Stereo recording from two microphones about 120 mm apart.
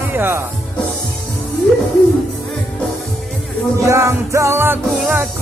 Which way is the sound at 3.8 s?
25° right (ahead or behind).